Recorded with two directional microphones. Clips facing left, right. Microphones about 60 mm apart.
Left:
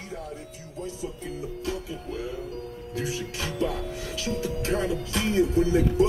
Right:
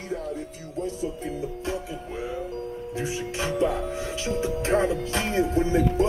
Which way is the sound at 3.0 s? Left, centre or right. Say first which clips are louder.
Right 2 dB; right.